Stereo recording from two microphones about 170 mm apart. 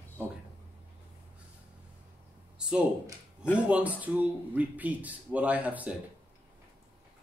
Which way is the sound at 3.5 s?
5° right (ahead or behind).